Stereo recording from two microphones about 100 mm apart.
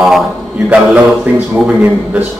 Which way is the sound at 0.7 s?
15° right (ahead or behind).